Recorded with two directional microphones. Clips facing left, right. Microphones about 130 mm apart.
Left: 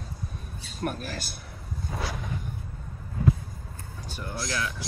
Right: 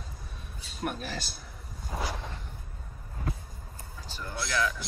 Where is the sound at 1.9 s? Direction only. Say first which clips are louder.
Even; 10° right (ahead or behind).